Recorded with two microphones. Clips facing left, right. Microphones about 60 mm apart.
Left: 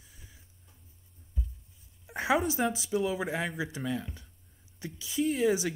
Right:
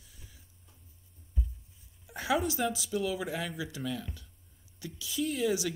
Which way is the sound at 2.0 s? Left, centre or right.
Left.